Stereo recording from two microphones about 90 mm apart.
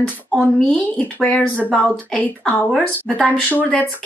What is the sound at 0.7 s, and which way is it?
Speech, 10° left (ahead or behind).